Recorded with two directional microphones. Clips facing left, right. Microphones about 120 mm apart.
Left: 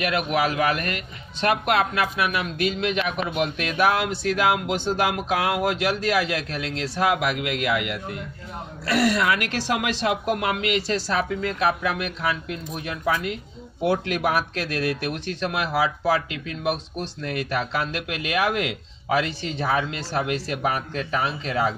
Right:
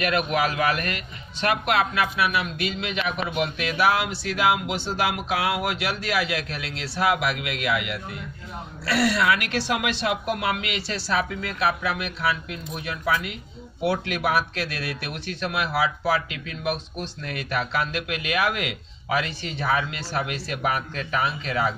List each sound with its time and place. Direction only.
0.0 s a man's voice: 15° left (ahead or behind)
1.4 s speech: 40° left (ahead or behind)
8.9 s speech: 45° left (ahead or behind)